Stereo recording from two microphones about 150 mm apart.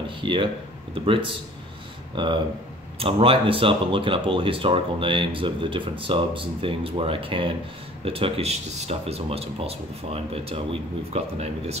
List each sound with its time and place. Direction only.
0.2 s speech: 35° right (ahead or behind)